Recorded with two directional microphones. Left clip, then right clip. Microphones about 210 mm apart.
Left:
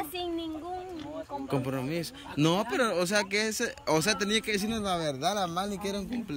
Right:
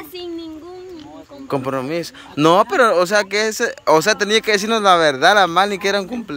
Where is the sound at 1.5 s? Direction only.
5° left (ahead or behind).